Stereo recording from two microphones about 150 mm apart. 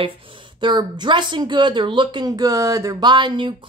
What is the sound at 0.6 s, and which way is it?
Speech, 30° right (ahead or behind).